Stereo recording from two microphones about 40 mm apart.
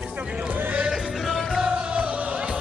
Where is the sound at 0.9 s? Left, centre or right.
Centre.